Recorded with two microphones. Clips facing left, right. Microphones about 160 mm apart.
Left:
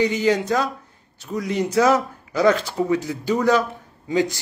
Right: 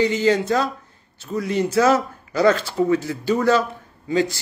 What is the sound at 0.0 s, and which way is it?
Speech, 15° left (ahead or behind).